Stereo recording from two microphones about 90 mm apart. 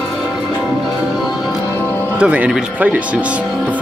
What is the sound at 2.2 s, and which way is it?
Speech, 15° right (ahead or behind).